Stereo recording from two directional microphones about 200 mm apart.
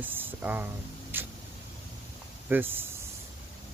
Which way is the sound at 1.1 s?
10° right (ahead or behind).